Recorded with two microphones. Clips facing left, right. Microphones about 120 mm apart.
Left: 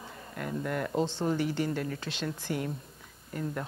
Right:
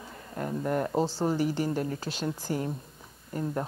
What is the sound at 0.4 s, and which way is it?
A woman's voice, 30° right (ahead or behind).